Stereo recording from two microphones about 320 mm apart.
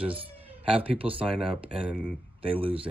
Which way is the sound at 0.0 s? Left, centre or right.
Centre.